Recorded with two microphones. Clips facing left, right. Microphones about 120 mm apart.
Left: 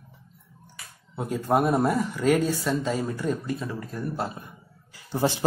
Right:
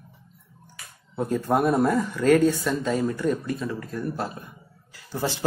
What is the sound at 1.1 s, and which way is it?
Speech, 5° left (ahead or behind).